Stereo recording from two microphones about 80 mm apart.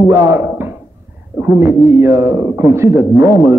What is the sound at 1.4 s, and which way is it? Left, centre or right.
Speech, right.